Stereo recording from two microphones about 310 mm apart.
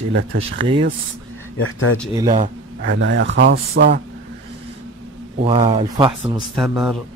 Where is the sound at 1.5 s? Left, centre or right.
Left.